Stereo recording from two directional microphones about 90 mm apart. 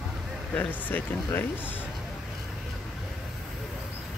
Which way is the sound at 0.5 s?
20° left (ahead or behind).